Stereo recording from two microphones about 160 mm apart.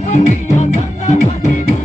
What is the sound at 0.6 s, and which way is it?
Music, 50° left (ahead or behind).